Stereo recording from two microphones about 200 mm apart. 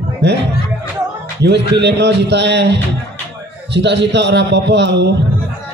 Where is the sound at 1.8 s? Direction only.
60° right (ahead or behind).